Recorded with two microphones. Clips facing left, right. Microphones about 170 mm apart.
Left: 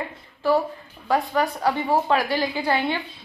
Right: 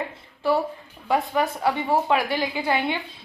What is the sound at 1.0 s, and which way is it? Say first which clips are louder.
A woman's voice: left 1 dB; 20° right (ahead or behind).